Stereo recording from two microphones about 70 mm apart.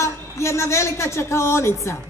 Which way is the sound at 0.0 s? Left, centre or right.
Left.